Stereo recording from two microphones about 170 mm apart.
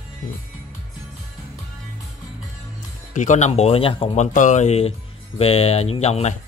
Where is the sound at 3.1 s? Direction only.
45° left (ahead or behind).